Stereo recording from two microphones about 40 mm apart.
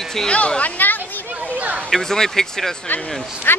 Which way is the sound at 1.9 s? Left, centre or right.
Centre.